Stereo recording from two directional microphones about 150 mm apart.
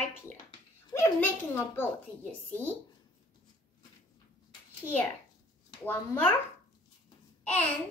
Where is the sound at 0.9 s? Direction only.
15° left (ahead or behind).